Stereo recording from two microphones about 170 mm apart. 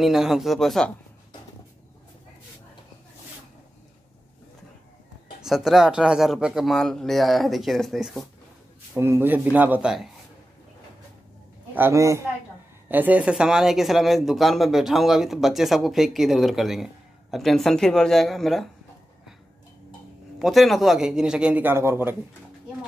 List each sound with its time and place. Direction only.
0.0 s speech: centre (ahead or behind)
5.4 s speech: centre (ahead or behind)
8.9 s speech: 15° right (ahead or behind)
11.7 s speech: 15° right (ahead or behind); by 18.7 s centre (ahead or behind)
20.3 s speech: centre (ahead or behind)